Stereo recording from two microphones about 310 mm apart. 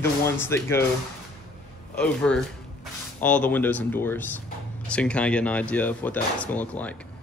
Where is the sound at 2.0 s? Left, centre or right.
Centre.